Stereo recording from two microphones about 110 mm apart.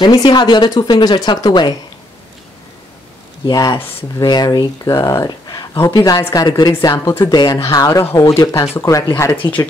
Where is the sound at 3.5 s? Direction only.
35° left (ahead or behind).